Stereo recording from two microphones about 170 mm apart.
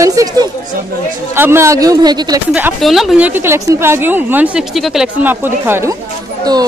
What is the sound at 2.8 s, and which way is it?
A woman's voice, centre (ahead or behind).